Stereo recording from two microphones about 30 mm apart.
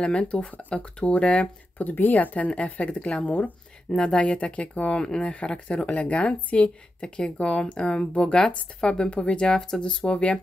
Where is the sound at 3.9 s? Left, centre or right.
Left.